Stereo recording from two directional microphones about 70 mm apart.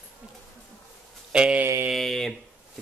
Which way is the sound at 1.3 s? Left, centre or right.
Centre.